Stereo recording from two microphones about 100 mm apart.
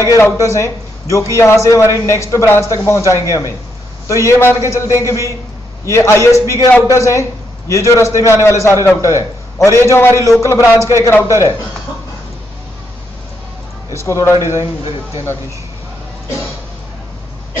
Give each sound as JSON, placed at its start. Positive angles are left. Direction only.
{"t": 0.0, "sound": "a man's voice", "side_deg": 30}
{"t": 13.9, "sound": "a man's voice", "side_deg": 30}